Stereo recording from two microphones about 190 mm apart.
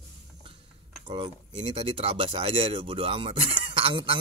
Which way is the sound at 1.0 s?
30° right (ahead or behind).